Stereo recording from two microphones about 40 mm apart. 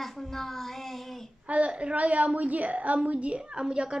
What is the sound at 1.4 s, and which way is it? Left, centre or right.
A woman's voice, right.